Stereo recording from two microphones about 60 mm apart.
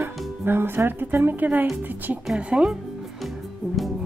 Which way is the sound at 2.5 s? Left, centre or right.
Centre.